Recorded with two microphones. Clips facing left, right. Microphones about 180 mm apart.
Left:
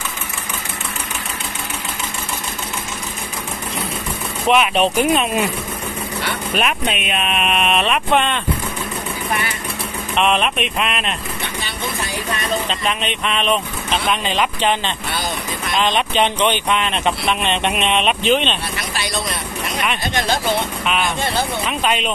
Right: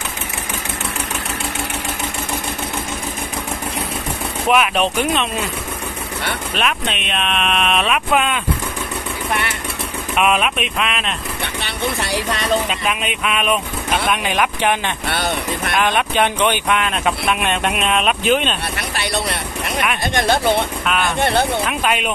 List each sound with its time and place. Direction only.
4.5 s speech: centre (ahead or behind)
6.5 s speech: 5° left (ahead or behind)
10.1 s speech: 5° right (ahead or behind)
11.6 s speech: 75° right (ahead or behind)
12.6 s speech: 5° right (ahead or behind)
15.0 s vehicle: 65° right (ahead or behind)
15.9 s speech: 10° right (ahead or behind)
18.8 s a sound: 60° right (ahead or behind)
20.2 s speech: 55° right (ahead or behind)
20.8 s speech: centre (ahead or behind)
21.2 s speech: 65° right (ahead or behind)
21.6 s speech: 5° right (ahead or behind)